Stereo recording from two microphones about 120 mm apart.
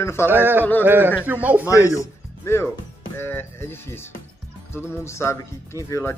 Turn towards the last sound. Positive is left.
turn(degrees=25)  # may be behind; listen again after turning